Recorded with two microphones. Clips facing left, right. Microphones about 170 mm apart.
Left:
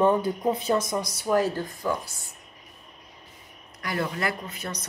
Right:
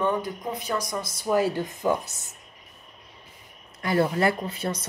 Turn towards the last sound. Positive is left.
turn(degrees=-30)  # may be behind; listen again after turning